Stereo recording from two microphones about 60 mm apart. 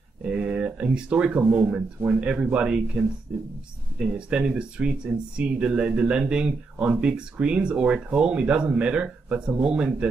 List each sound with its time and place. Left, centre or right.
0.2 s a man's voice: centre